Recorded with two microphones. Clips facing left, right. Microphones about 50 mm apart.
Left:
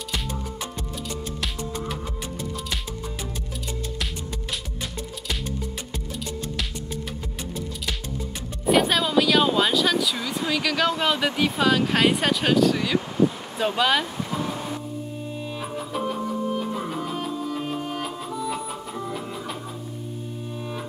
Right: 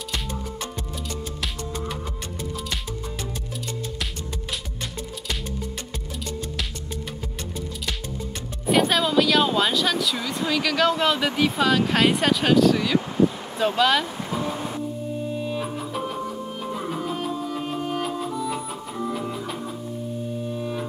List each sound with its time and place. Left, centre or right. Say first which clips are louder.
0.1 s music: even; centre
8.6 s speech: even; centre
14.3 s vehicle: right 2 dB; centre
15.2 s music: right 4 dB; centre
20.5 s music: right 1 dB; centre